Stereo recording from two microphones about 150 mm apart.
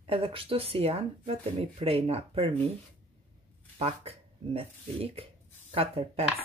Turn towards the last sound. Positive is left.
turn(degrees=-40)  # may be behind; listen again after turning